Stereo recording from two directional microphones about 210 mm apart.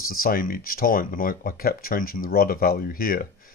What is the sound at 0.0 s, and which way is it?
Speech, 45° left (ahead or behind).